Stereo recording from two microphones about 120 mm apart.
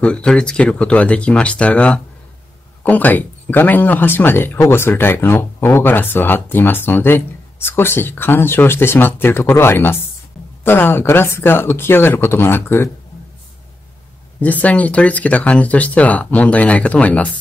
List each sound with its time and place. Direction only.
0.0 s speech: 10° left (ahead or behind)
14.4 s speech: 15° left (ahead or behind)